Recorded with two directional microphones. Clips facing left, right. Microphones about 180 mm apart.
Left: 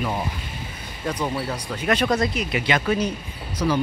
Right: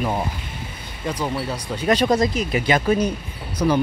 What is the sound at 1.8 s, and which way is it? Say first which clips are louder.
Speech: right 3 dB; 35° right (ahead or behind).